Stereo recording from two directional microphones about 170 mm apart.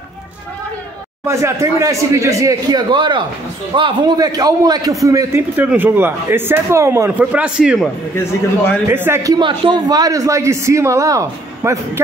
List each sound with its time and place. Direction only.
1.2 s a man's voice: 15° right (ahead or behind)